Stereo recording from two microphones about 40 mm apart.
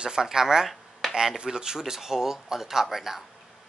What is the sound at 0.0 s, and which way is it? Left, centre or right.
Speech, centre.